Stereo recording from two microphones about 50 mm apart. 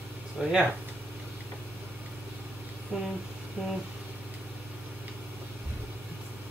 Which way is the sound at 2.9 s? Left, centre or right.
Right.